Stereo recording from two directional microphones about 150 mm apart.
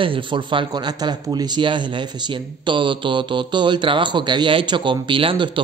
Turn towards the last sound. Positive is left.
turn(degrees=-35)  # may be behind; listen again after turning